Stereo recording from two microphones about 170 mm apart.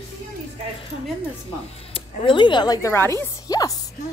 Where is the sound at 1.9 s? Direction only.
30° left (ahead or behind).